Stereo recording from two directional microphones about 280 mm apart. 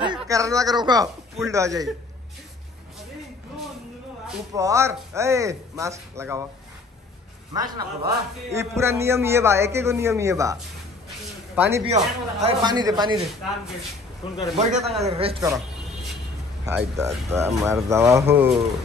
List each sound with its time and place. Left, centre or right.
0.0 s speech: centre
4.3 s a man's voice: centre
7.5 s a man's voice: centre
11.8 s a man's voice: right
14.8 s speech: centre
15.0 s speech: centre
16.6 s a man's voice: centre